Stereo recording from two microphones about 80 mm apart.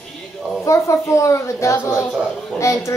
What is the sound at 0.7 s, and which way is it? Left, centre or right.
A child's voice, left.